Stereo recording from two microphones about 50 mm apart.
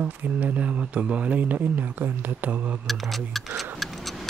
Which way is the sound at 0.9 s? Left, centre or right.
Right.